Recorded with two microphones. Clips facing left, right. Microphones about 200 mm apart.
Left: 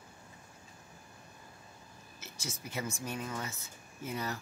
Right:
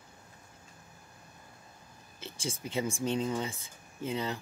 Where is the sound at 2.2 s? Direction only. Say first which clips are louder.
Right 6 dB; 30° right (ahead or behind).